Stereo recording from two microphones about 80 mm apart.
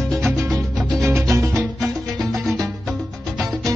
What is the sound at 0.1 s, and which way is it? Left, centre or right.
Music, centre.